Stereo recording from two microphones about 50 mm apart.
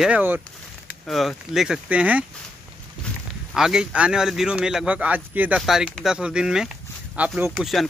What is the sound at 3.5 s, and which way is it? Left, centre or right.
Speech, centre.